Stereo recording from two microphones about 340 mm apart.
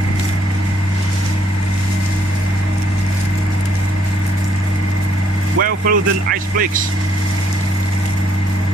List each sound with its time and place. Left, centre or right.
5.6 s speech: right